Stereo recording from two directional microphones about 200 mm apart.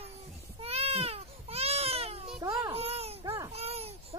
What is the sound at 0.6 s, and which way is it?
Baby cry, 30° right (ahead or behind).